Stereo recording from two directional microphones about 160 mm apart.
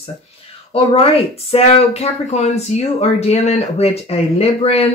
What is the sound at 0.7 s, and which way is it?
Speech, 35° left (ahead or behind).